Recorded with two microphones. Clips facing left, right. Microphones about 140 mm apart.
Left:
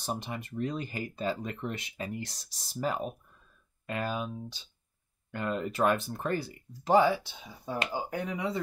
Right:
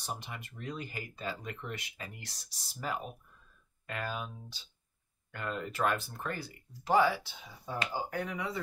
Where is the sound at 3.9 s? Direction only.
25° left (ahead or behind).